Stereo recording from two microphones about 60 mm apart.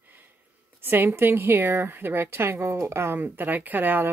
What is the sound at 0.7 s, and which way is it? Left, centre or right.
Speech, right.